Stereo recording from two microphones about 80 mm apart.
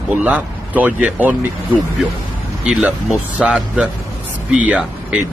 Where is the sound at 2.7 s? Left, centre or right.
Centre.